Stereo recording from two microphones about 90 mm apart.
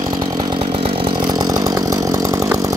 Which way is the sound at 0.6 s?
85° right.